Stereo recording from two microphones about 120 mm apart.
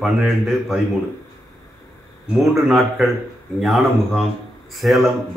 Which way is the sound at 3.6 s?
Centre (ahead or behind).